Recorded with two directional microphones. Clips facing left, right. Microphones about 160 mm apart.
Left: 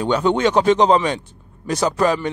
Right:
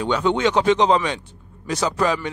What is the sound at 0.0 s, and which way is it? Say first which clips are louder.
Speech: left 2 dB; 45° left (ahead or behind).